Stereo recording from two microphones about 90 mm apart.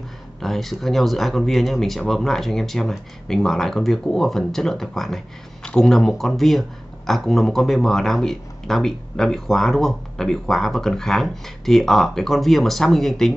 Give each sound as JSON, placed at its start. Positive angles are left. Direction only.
{"t": 0.4, "sound": "speech", "side_deg": 0}